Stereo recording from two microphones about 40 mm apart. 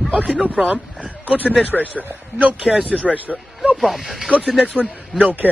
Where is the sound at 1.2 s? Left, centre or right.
Right.